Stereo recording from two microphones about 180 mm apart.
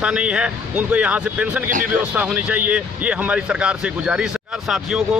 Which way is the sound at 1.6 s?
45° right (ahead or behind).